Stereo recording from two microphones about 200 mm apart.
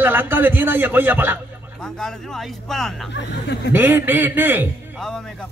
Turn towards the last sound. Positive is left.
turn(degrees=5)  # may be behind; listen again after turning